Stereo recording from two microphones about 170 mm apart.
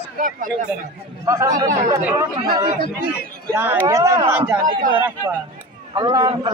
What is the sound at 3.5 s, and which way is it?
Speech, 10° right (ahead or behind).